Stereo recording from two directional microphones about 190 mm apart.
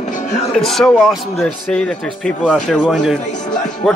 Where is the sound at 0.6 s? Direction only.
Centre (ahead or behind).